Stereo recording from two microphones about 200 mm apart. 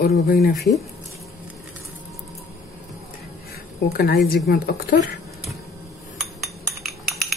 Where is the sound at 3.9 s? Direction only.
50° left (ahead or behind).